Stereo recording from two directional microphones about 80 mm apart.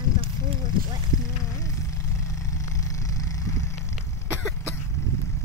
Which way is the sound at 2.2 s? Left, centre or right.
Left.